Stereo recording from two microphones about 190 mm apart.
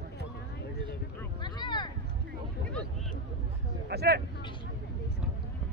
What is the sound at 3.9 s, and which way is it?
Speech, 55° right (ahead or behind).